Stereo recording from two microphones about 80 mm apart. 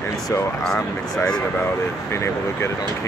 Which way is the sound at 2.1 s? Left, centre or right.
Left.